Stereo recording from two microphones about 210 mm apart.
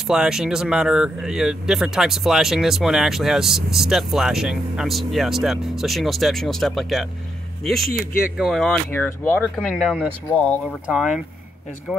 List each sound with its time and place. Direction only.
0.0 s speech: centre (ahead or behind)
7.9 s speech: 45° left (ahead or behind)
8.4 s speech: centre (ahead or behind)
8.9 s speech: 10° left (ahead or behind)